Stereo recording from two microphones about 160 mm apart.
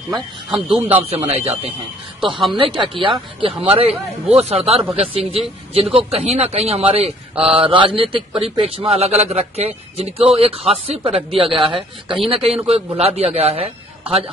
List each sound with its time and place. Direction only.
0.1 s speech: centre (ahead or behind)
1.1 s speech: 40° right (ahead or behind)